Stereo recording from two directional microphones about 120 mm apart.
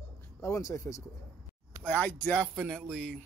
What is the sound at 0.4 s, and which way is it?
Speech, 25° left (ahead or behind).